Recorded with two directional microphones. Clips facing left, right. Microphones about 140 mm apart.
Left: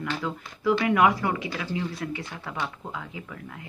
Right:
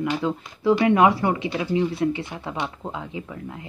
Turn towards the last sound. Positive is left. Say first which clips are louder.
# right 5 dB
turn(degrees=-25)  # may be behind; listen again after turning